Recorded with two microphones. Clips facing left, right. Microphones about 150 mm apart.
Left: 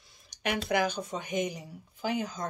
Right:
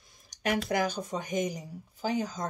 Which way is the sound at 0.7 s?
45° right (ahead or behind).